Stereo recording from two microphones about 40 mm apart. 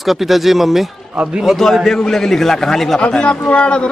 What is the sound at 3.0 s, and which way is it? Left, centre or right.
Speech, left.